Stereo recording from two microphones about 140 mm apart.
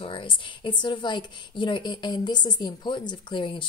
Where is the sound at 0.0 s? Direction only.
35° left (ahead or behind).